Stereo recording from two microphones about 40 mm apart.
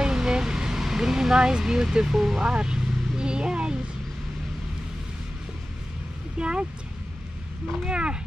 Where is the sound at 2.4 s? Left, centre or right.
Right.